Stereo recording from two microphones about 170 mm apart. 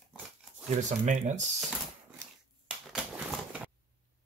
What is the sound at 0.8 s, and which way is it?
Speech, 45° right (ahead or behind).